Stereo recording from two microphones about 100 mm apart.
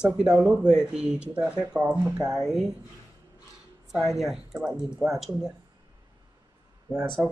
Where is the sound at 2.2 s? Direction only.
40° right (ahead or behind).